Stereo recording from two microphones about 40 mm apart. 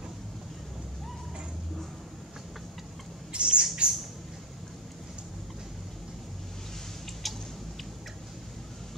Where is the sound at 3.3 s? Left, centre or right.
Right.